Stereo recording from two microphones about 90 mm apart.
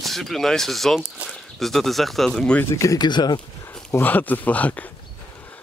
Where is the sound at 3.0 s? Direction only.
55° left (ahead or behind).